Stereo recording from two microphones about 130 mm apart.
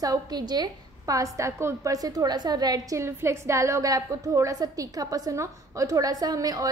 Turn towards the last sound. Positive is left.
turn(degrees=-30)  # may be behind; listen again after turning